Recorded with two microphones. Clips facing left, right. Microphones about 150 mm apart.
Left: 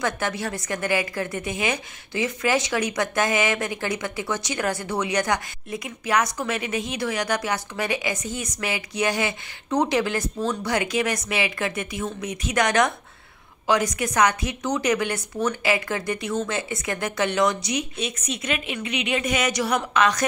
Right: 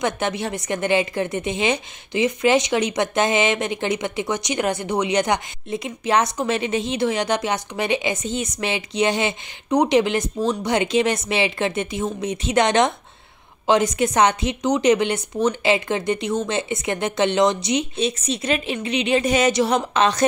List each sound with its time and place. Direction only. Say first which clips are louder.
0.0 s a woman's voice: right 3 dB; 20° right (ahead or behind)